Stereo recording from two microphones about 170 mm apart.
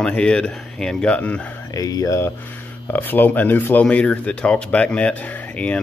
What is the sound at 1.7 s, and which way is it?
Speech, 20° left (ahead or behind).